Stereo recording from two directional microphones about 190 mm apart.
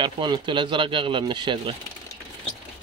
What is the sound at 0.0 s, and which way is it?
Speech, 25° right (ahead or behind).